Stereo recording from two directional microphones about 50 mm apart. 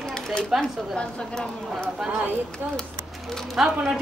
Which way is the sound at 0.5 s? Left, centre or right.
Centre.